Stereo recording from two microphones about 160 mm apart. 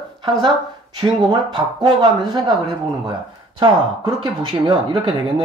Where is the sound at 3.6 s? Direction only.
30° right (ahead or behind).